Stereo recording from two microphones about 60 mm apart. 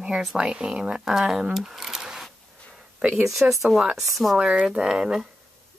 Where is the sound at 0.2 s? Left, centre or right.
Centre.